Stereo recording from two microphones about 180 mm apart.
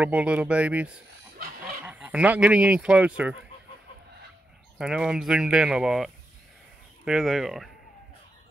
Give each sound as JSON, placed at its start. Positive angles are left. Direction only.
{"t": 0.0, "sound": "speech", "side_deg": -5}
{"t": 4.7, "sound": "speech", "side_deg": -5}